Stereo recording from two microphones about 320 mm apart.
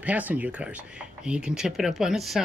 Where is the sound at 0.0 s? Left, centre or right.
Centre.